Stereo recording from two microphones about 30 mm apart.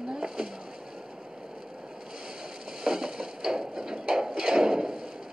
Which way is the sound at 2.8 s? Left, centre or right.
Right.